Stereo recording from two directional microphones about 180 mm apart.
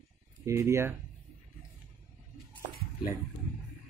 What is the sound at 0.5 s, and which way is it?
Speech, 15° right (ahead or behind).